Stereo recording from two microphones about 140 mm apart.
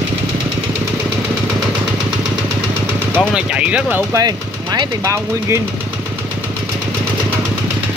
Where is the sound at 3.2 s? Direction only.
5° right (ahead or behind).